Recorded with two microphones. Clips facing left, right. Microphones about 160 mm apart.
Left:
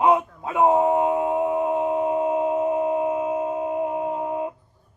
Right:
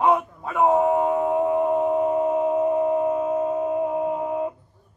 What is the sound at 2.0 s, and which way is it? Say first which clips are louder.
Singing bowl: right 1 dB; 20° left (ahead or behind).